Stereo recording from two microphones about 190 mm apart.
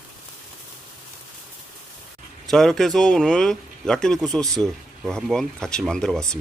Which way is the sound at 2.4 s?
Centre (ahead or behind).